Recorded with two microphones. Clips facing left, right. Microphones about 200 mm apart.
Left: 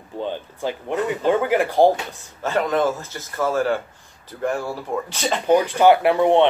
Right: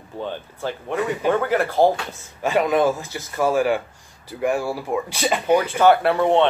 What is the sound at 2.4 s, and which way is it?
Speech, 15° right (ahead or behind).